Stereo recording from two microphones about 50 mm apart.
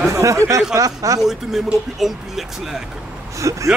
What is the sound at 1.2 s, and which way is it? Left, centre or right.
Speech, centre.